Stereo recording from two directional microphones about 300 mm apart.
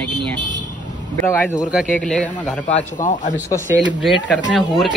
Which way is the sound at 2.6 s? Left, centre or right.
Left.